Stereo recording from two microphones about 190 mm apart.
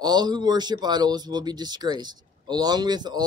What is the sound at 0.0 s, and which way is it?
Speech, 20° right (ahead or behind).